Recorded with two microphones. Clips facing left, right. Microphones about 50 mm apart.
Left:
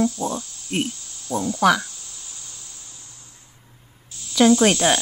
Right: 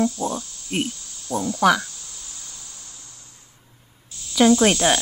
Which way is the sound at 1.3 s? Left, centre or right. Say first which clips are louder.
Even; centre.